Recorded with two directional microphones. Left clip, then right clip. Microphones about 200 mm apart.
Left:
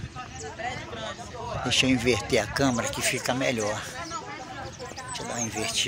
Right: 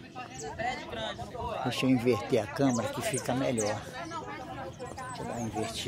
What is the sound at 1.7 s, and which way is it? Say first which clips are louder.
Speech: left 6 dB; centre (ahead or behind).